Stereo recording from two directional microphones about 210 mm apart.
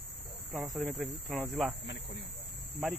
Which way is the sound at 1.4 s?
5° right (ahead or behind).